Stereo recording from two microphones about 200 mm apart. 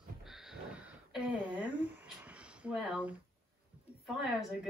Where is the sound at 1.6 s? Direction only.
60° left (ahead or behind).